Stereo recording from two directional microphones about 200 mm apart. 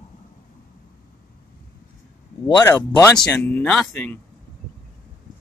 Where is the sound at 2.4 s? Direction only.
20° left (ahead or behind).